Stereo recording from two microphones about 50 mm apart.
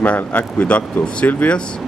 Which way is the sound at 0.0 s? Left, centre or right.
Left.